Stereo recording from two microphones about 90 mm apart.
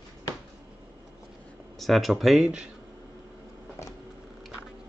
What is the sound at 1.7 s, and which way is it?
Speech, centre (ahead or behind).